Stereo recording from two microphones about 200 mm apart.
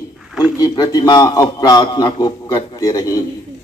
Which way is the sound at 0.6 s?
20° left (ahead or behind).